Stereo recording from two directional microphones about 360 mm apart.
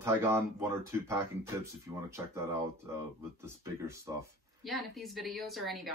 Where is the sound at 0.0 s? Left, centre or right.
Centre.